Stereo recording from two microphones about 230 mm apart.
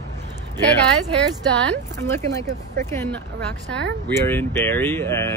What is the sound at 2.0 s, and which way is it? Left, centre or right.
Speech, centre.